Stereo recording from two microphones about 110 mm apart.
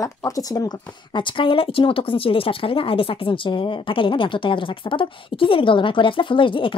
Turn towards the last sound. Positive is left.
turn(degrees=50)  # may be behind; listen again after turning